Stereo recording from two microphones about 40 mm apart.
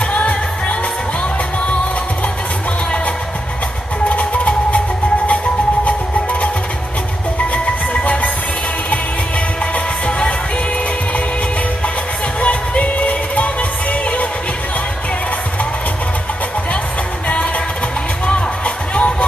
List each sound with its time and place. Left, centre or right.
0.0 s music: left
4.1 s music: left
7.5 s music: left
10.0 s music: left
12.4 s music: left
18.9 s music: left